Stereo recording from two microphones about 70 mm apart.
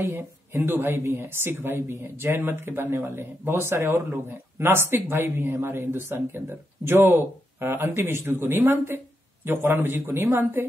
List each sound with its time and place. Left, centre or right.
0.5 s speech: right